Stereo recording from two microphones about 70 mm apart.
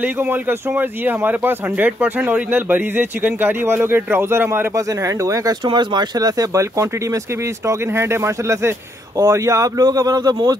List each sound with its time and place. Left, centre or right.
0.0 s speech: right
4.7 s speech: right
7.6 s speech: right